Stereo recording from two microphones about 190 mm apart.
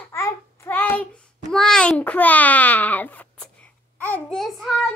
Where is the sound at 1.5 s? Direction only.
5° left (ahead or behind).